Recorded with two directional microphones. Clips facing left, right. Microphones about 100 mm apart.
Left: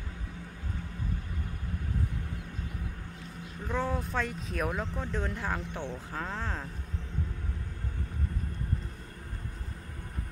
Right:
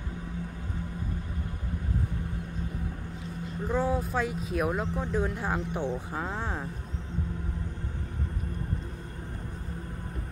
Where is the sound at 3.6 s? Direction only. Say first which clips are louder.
Right 4 dB; 10° right (ahead or behind).